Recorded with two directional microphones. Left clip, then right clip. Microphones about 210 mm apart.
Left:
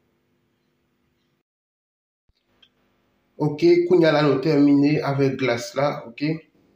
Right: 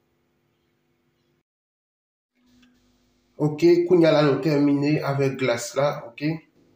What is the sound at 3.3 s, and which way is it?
A man's voice, 10° left (ahead or behind).